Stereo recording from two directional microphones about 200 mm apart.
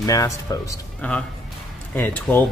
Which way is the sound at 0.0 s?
15° left (ahead or behind).